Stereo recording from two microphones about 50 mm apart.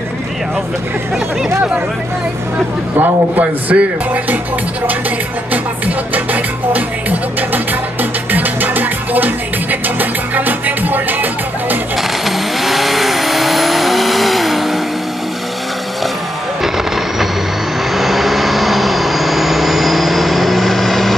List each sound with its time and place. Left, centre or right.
3.0 s speech: right
6.1 s music: right
12.3 s vehicle: centre
16.6 s vehicle: centre